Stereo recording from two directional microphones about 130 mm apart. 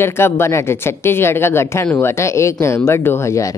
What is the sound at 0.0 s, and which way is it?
Speech, 20° left (ahead or behind).